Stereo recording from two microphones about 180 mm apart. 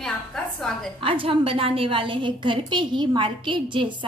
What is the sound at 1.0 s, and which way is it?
A woman's voice, 30° right (ahead or behind).